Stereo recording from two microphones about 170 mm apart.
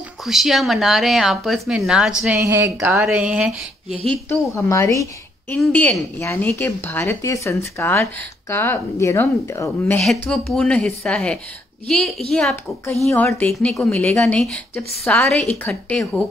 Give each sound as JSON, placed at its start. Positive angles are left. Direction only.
{"t": 0.2, "sound": "a woman's voice", "side_deg": 0}
{"t": 4.3, "sound": "speech", "side_deg": 15}
{"t": 10.0, "sound": "a woman's voice", "side_deg": 0}